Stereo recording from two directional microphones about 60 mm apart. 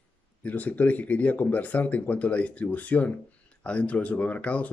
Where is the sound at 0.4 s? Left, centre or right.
Left.